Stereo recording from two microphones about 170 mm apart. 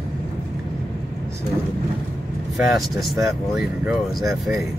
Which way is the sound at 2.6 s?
Centre (ahead or behind).